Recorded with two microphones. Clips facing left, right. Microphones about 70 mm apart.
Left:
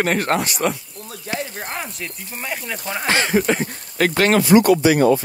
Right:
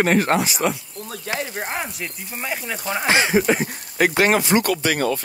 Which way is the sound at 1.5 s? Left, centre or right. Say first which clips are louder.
Right 2 dB; centre.